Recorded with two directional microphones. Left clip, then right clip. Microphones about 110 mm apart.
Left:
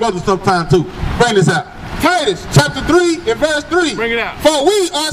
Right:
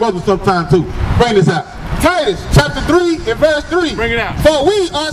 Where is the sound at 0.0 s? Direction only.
40° left (ahead or behind).